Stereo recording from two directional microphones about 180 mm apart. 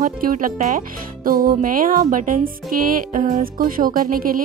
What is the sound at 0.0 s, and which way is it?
Speech, 50° right (ahead or behind).